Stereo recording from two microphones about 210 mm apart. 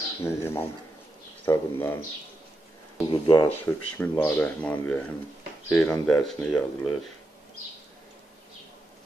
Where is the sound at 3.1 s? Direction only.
20° left (ahead or behind).